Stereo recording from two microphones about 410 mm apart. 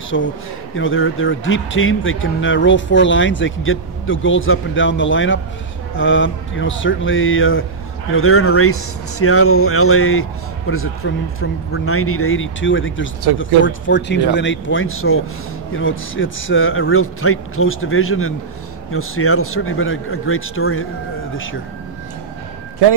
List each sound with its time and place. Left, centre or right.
0.1 s speech: left